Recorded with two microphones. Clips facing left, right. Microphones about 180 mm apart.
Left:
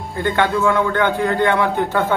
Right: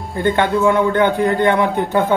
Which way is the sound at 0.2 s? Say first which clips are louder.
Right 2 dB; 20° right (ahead or behind).